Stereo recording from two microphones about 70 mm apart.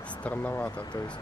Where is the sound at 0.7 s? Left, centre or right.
Left.